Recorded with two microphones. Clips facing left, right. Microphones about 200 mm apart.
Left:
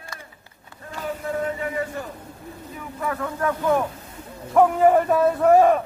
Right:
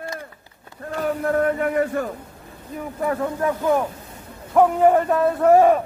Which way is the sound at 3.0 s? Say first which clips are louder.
Right 4 dB; 30° right (ahead or behind).